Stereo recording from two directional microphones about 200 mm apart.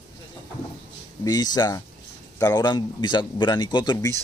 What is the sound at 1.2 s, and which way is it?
Speech, 20° left (ahead or behind).